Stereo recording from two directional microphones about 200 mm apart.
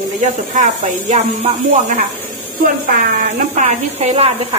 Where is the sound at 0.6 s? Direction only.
35° right (ahead or behind).